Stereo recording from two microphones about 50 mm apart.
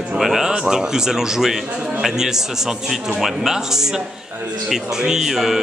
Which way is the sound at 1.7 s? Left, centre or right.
Right.